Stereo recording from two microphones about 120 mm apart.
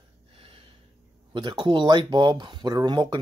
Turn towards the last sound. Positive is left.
turn(degrees=-35)  # may be behind; listen again after turning